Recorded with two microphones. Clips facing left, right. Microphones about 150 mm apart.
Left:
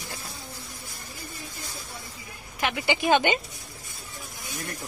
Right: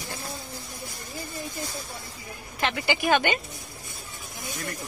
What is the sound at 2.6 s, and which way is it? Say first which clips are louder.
Speech: even; 15° left (ahead or behind).